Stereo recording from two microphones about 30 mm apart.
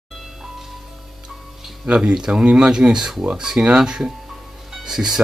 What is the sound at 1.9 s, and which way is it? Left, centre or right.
Speech, right.